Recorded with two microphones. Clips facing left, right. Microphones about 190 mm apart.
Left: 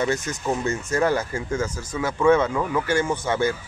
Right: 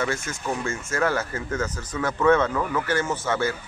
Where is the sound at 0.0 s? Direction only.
20° left (ahead or behind).